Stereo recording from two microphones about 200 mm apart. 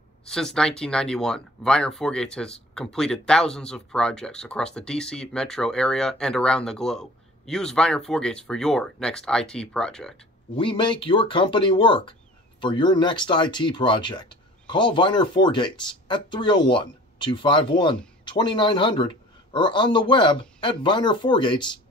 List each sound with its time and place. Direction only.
0.3 s speech: 5° left (ahead or behind)
10.5 s speech: 25° left (ahead or behind)